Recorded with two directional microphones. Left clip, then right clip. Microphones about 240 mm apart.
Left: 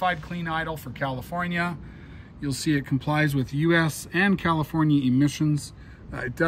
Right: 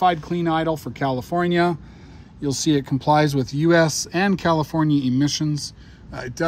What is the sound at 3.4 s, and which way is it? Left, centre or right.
Speech, centre.